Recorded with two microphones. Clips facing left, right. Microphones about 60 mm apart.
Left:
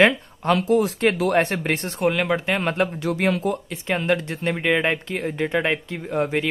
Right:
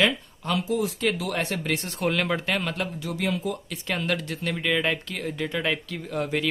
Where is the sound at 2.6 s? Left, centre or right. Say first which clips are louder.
Left 7 dB; left.